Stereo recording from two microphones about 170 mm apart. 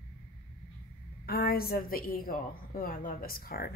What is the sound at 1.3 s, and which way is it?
A woman's voice, 60° left (ahead or behind).